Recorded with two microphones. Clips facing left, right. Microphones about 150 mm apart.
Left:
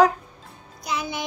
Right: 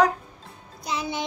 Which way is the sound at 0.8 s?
25° right (ahead or behind).